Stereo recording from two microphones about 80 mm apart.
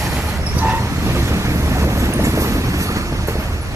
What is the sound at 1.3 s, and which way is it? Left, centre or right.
Vehicle, right.